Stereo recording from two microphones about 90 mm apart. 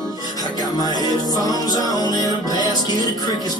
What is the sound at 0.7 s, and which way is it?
Music, 50° left (ahead or behind).